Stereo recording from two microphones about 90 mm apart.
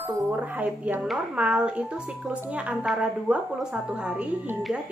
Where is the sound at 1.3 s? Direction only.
10° right (ahead or behind).